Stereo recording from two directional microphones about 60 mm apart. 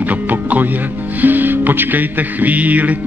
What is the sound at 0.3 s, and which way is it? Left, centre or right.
Music, right.